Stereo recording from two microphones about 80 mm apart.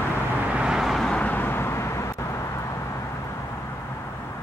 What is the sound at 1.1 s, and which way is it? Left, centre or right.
Vehicle, left.